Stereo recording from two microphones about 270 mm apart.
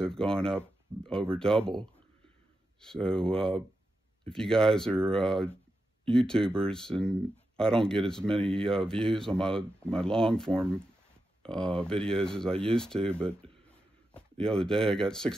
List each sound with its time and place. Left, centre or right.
0.0 s speech: centre
2.8 s speech: centre